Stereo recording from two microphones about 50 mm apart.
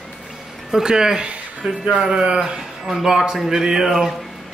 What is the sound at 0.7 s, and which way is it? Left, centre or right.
Speech, centre.